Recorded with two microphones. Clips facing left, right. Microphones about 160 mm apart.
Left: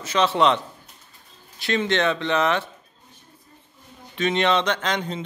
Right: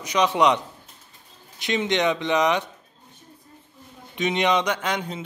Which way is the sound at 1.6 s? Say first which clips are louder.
Left 1 dB; 20° right (ahead or behind).